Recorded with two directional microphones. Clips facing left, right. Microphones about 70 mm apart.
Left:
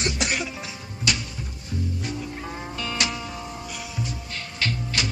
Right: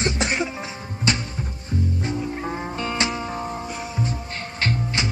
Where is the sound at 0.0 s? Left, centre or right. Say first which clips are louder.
Right 3 dB; right.